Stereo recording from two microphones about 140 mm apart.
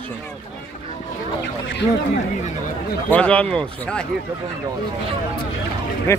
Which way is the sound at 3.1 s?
10° left (ahead or behind).